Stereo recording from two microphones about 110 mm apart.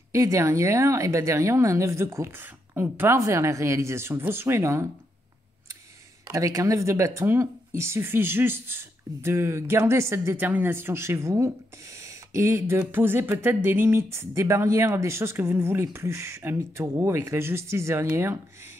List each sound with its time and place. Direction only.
0.1 s speech: 25° right (ahead or behind)
6.2 s speech: 30° right (ahead or behind)